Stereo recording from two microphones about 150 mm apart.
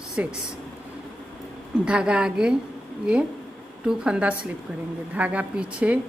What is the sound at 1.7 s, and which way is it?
Speech, 5° right (ahead or behind).